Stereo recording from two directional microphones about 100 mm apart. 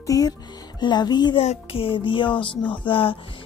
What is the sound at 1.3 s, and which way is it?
Speech, 70° left (ahead or behind).